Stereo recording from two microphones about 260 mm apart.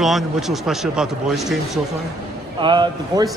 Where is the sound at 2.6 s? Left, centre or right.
Centre.